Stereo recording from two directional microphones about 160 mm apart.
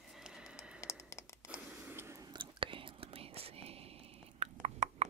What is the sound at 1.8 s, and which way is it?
Whispering, 15° right (ahead or behind).